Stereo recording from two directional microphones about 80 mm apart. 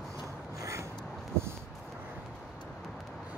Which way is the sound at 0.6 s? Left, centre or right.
Right.